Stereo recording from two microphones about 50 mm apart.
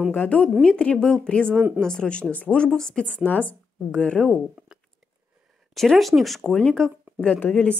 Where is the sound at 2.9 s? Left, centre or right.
Centre.